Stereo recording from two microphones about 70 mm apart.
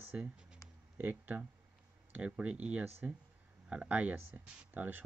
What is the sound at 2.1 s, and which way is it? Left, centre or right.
Speech, centre.